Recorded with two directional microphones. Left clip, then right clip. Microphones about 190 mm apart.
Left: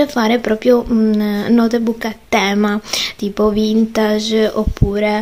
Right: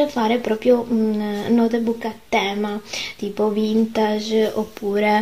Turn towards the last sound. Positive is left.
turn(degrees=10)  # may be behind; listen again after turning